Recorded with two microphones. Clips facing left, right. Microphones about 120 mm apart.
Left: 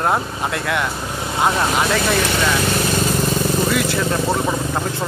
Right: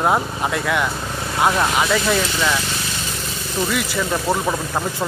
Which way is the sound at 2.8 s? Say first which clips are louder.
Left 10 dB; 50° left (ahead or behind).